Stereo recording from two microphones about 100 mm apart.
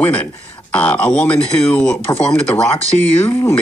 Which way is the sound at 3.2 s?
25° left (ahead or behind).